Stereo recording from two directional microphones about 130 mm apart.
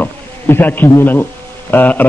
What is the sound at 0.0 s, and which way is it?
A man's voice, 15° left (ahead or behind).